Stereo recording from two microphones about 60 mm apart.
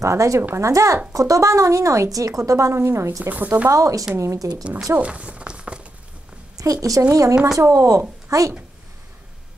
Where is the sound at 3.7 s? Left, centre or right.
Right.